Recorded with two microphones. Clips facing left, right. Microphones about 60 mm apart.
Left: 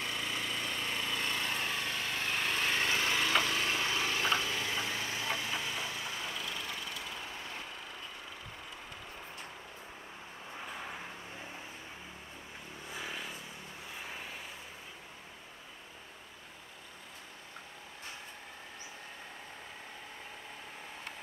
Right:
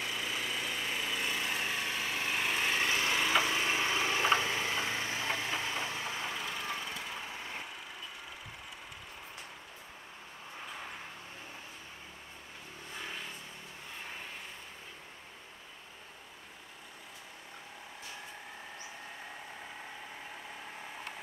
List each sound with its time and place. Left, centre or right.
0.0 s lawn mower: centre; by 6.1 s right
6.1 s vehicle: right
10.7 s vehicle: centre
12.9 s vehicle: centre